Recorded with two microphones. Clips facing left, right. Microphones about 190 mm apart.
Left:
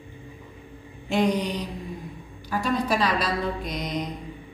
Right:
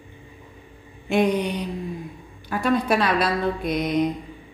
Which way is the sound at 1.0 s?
55° right (ahead or behind).